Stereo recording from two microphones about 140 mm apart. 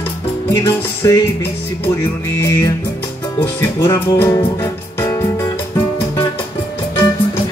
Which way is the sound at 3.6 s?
30° left (ahead or behind).